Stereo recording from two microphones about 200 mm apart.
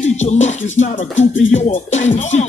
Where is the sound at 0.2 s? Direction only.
35° left (ahead or behind).